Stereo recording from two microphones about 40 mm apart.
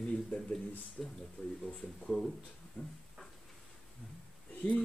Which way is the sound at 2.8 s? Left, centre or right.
Left.